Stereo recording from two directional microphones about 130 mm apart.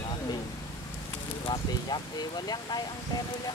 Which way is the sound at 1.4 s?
35° left (ahead or behind).